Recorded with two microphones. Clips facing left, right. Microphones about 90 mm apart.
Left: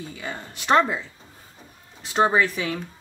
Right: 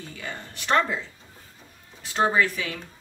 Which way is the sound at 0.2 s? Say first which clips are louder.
Left 2 dB; 15° left (ahead or behind).